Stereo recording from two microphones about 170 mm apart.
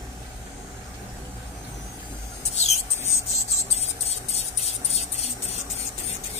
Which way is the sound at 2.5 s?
40° left (ahead or behind).